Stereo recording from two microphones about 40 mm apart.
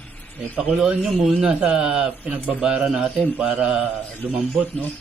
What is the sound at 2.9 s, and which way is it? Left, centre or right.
Speech, centre.